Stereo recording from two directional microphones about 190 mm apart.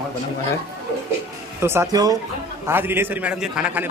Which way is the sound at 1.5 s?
15° right (ahead or behind).